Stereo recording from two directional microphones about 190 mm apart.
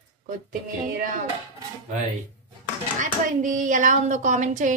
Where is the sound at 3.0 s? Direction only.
40° right (ahead or behind).